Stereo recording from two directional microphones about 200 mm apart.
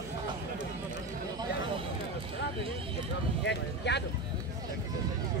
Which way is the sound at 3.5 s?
60° left (ahead or behind).